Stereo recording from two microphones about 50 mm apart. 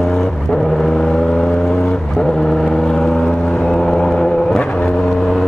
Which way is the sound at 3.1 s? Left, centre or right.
Centre.